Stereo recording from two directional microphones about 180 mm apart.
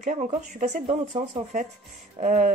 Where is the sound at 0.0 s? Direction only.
45° right (ahead or behind).